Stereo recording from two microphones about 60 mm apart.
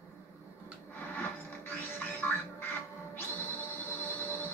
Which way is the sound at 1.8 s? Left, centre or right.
Left.